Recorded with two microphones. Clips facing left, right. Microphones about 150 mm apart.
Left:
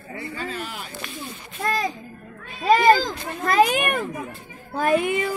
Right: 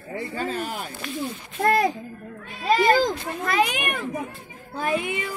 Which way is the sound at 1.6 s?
60° right (ahead or behind).